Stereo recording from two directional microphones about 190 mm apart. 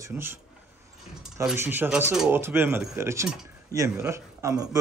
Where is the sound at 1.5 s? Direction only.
10° right (ahead or behind).